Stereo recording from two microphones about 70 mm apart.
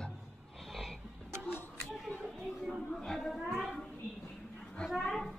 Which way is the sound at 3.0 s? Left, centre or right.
Centre.